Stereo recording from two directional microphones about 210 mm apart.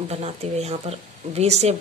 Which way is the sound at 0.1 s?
30° right (ahead or behind).